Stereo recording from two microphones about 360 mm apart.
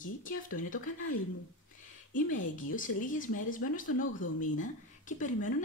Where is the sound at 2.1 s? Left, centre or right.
Left.